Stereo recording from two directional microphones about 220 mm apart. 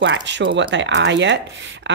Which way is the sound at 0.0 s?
55° right (ahead or behind).